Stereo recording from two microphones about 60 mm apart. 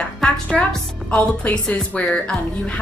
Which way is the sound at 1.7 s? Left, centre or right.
Centre.